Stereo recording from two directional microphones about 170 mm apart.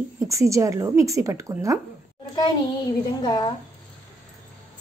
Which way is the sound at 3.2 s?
25° left (ahead or behind).